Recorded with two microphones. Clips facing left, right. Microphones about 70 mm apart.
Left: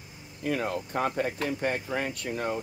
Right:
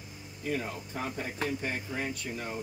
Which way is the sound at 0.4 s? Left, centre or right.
Left.